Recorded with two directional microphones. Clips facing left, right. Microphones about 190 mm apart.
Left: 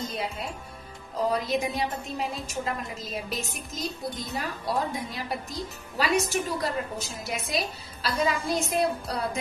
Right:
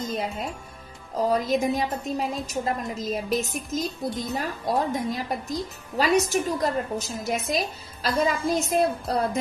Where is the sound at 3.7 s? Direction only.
Centre (ahead or behind).